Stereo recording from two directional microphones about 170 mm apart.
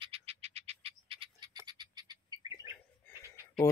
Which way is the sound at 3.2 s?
15° left (ahead or behind).